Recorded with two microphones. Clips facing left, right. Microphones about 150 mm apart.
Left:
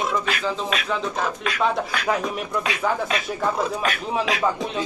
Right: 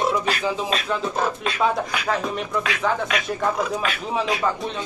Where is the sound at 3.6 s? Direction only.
40° left (ahead or behind).